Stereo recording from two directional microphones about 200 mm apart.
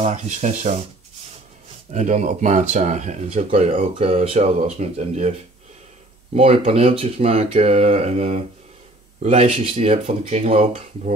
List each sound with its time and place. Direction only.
0.0 s speech: 35° right (ahead or behind)
1.9 s speech: 35° right (ahead or behind)
6.3 s speech: 30° right (ahead or behind)